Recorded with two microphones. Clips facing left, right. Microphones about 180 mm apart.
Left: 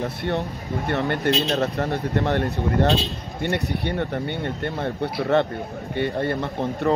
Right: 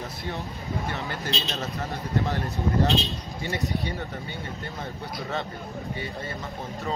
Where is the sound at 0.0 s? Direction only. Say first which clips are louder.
Left 8 dB; 65° left (ahead or behind).